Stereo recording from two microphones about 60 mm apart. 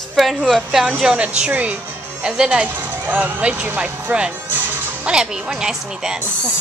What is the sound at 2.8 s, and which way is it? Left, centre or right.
A woman's voice, right.